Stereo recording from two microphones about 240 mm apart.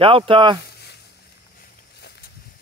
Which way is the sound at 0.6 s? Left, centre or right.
Left.